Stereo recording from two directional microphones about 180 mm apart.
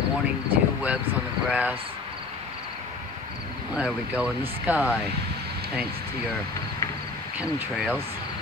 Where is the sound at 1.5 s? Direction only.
10° right (ahead or behind).